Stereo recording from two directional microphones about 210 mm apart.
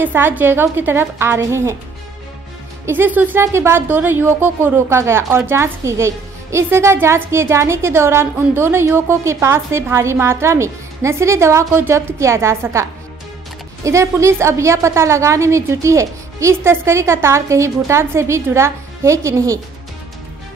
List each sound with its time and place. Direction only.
0.0 s a woman's voice: 10° right (ahead or behind)
2.9 s a woman's voice: 10° right (ahead or behind)
13.8 s a woman's voice: 15° right (ahead or behind)